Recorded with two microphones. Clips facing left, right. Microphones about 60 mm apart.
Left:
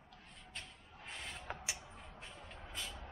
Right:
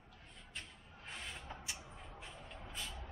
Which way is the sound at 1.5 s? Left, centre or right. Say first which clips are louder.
Left 4 dB; left.